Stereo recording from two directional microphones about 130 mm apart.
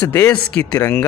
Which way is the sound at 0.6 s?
25° left (ahead or behind).